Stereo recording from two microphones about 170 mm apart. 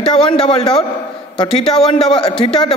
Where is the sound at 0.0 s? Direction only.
35° left (ahead or behind).